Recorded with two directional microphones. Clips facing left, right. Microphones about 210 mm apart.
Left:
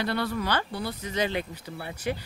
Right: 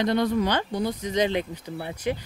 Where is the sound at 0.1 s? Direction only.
15° right (ahead or behind).